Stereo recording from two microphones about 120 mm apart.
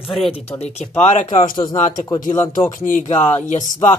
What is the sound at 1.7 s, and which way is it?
Speech, 90° left.